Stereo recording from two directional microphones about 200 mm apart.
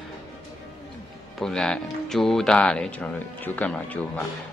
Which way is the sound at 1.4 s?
Centre (ahead or behind).